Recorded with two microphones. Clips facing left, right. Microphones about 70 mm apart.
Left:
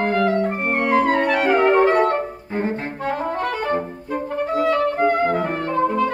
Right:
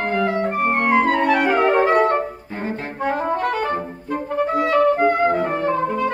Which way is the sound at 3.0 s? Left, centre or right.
Centre.